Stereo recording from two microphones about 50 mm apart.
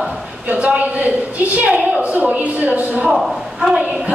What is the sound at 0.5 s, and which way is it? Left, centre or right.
A woman's voice, right.